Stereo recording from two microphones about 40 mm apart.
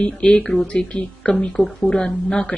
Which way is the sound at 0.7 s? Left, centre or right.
Left.